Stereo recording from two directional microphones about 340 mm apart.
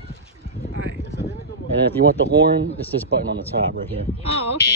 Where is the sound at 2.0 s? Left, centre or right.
Right.